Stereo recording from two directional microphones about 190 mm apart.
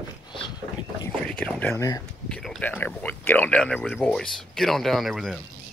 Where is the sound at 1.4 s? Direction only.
10° left (ahead or behind).